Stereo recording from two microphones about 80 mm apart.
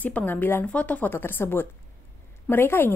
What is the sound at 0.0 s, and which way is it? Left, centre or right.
A woman's voice, left.